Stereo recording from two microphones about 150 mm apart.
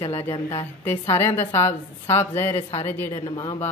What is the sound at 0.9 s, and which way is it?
Speech, 15° left (ahead or behind).